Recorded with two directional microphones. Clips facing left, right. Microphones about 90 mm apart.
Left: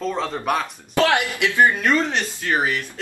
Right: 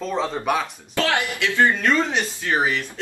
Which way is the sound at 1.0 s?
20° left (ahead or behind).